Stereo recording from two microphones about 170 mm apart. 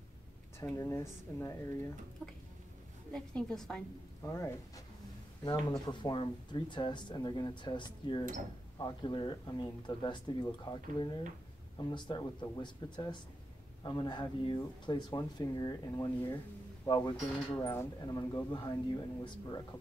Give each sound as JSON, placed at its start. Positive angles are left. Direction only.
{"t": 0.6, "sound": "speech", "side_deg": 15}
{"t": 2.2, "sound": "a woman's voice", "side_deg": 5}
{"t": 4.2, "sound": "speech", "side_deg": 15}